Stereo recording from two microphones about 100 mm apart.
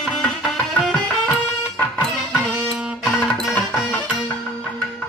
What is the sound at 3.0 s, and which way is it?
Music, 10° left (ahead or behind).